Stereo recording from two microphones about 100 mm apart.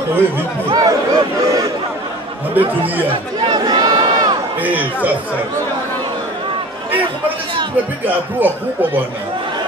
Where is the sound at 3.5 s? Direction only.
45° right (ahead or behind).